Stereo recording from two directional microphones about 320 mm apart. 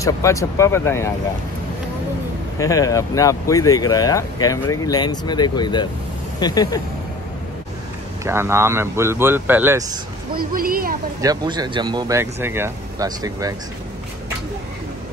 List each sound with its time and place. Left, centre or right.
0.0 s speech: centre
2.6 s speech: centre
8.2 s speech: centre
10.3 s speech: right
11.1 s speech: centre